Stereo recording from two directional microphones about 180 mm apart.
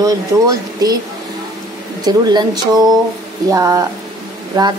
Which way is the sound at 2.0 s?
20° right (ahead or behind).